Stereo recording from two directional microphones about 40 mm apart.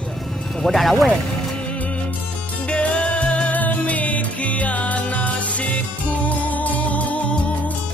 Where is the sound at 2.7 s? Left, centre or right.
Left.